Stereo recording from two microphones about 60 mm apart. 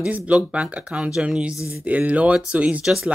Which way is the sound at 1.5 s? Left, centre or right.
Left.